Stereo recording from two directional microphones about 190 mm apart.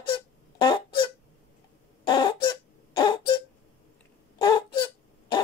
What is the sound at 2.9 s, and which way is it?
Throat clearing, 25° left (ahead or behind).